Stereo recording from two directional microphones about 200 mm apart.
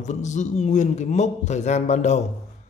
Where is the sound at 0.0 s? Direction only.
35° left (ahead or behind).